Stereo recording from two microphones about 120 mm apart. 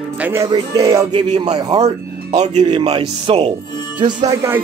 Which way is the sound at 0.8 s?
30° right (ahead or behind).